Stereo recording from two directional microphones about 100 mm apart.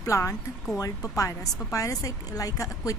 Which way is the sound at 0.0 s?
35° left (ahead or behind).